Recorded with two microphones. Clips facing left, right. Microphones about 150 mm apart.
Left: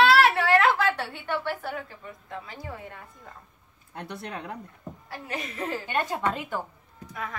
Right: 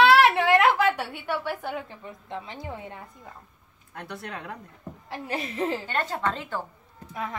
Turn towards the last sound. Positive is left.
turn(degrees=-25)  # may be behind; listen again after turning